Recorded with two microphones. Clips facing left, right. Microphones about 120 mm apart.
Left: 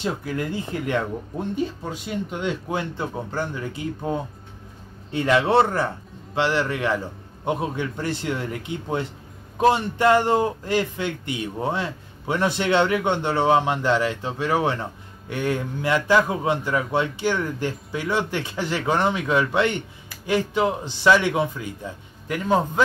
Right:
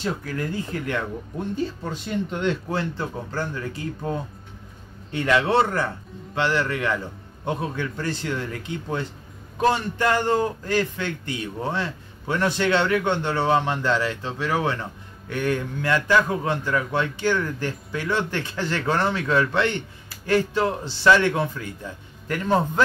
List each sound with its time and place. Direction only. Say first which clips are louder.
0.0 s a man's voice: left 1 dB; 20° left (ahead or behind)
1.5 s a man's voice: even; 10° left (ahead or behind)